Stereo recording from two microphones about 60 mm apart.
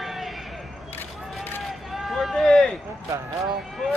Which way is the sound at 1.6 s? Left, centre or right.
Centre.